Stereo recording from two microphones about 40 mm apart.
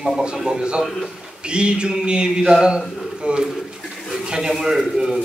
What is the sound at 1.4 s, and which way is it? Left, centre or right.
Speech, right.